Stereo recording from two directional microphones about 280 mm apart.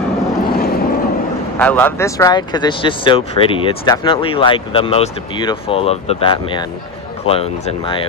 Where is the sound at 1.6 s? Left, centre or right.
Centre.